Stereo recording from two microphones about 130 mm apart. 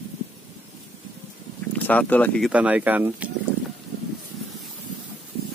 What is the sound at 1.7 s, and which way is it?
Speech, 10° left (ahead or behind).